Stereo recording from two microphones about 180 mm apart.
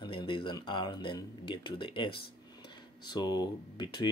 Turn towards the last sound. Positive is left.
turn(degrees=25)  # may be behind; listen again after turning